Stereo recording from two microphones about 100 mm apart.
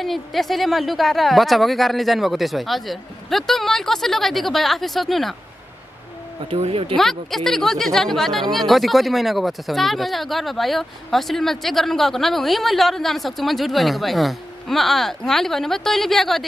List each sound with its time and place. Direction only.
0.0 s speech: centre (ahead or behind)
6.5 s speech: 70° right (ahead or behind)
7.0 s speech: centre (ahead or behind)